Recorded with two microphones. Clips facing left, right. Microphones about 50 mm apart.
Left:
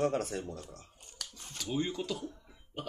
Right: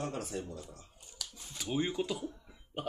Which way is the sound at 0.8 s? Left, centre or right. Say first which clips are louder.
Even; left.